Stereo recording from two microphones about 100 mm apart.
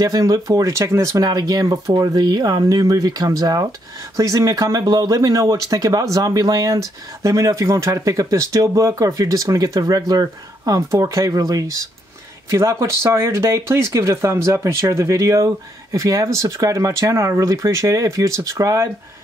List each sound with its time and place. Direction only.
0.0 s speech: 35° right (ahead or behind)